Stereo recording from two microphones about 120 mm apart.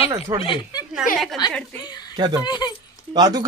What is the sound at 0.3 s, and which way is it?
Speech, 30° right (ahead or behind).